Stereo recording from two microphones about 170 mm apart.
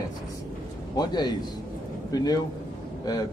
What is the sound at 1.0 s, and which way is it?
A man's voice, 25° left (ahead or behind).